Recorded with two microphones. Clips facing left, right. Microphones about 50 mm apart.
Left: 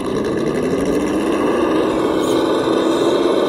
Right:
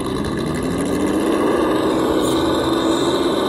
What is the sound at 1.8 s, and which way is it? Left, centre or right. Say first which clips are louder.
Vehicle: left 1 dB; left.